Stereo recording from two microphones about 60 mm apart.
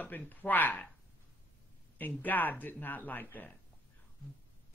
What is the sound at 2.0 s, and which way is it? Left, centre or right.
A man's voice, left.